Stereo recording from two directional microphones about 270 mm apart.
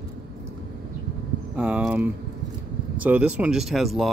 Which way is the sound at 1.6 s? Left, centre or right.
Centre.